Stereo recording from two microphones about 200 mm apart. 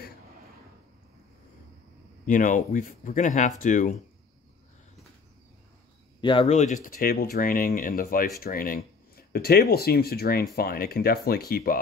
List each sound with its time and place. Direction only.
2.2 s speech: 40° left (ahead or behind)
6.2 s speech: 30° left (ahead or behind); by 11.8 s 50° left (ahead or behind)